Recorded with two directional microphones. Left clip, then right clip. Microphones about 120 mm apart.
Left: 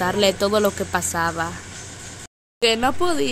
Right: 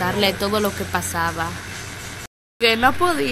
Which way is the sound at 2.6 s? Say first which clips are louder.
Right 3 dB; 30° left (ahead or behind).